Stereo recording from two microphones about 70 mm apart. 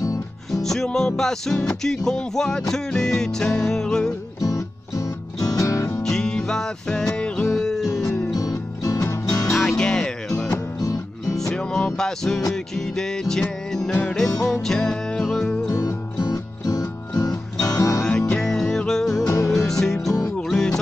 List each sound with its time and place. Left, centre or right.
0.5 s music: centre
4.4 s music: left
6.0 s music: centre
8.4 s music: left
9.5 s music: centre
10.5 s music: left
11.5 s music: centre
15.7 s music: left
16.2 s music: left
17.6 s music: left
18.0 s music: centre
19.2 s music: left
19.8 s music: centre